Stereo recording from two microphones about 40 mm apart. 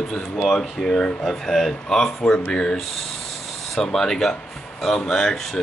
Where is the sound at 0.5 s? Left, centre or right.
Centre.